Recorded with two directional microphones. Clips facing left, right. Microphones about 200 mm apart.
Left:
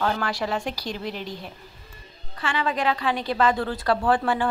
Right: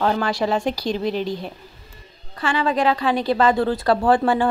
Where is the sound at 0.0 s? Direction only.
25° right (ahead or behind).